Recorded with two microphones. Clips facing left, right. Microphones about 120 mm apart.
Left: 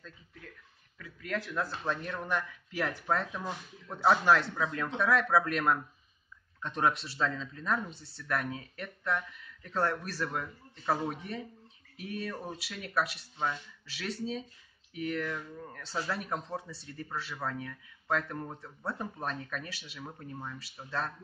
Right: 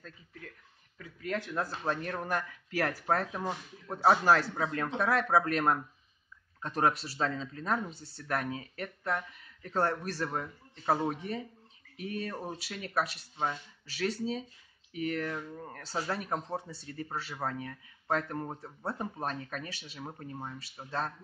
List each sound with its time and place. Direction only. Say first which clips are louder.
0.9 s speech: right 1 dB; 35° right (ahead or behind)
2.0 s speech: right 1 dB; 45° right (ahead or behind)
7.9 s speech: right 2 dB; centre (ahead or behind)
8.2 s speech: even; 30° right (ahead or behind)